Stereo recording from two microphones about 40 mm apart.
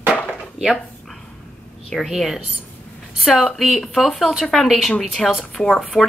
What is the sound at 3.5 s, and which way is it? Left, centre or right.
Speech, centre.